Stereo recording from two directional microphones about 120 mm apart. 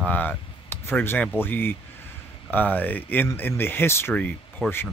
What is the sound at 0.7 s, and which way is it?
Speech, 20° left (ahead or behind).